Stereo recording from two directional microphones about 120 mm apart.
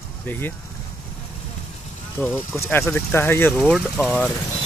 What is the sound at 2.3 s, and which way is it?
Speech, 20° left (ahead or behind).